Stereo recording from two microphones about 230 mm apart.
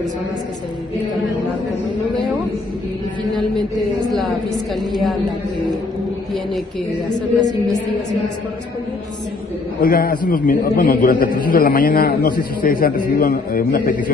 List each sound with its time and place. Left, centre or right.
7.1 s a man's voice: left
9.8 s a man's voice: left